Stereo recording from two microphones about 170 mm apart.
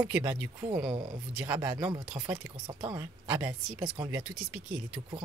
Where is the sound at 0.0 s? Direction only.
10° right (ahead or behind).